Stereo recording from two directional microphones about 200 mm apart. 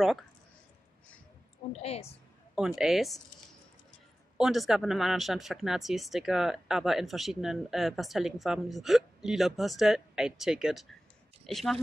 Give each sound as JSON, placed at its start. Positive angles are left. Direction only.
{"t": 1.7, "sound": "a woman's voice", "side_deg": 30}
{"t": 2.5, "sound": "speech", "side_deg": -5}
{"t": 4.4, "sound": "speech", "side_deg": 0}